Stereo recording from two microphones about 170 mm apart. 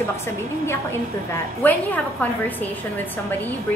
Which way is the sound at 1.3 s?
10° left (ahead or behind).